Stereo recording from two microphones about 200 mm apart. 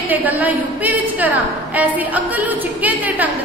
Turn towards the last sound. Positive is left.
turn(degrees=-10)  # may be behind; listen again after turning